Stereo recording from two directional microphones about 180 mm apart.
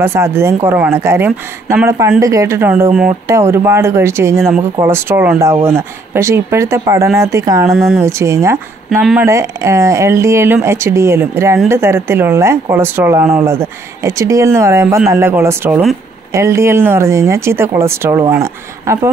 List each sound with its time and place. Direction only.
0.0 s speech: 15° right (ahead or behind)